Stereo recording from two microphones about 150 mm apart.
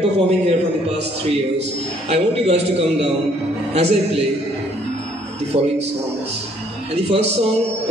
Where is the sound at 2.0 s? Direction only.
40° right (ahead or behind).